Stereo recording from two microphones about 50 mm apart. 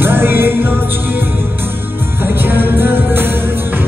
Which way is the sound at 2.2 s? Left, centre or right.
Right.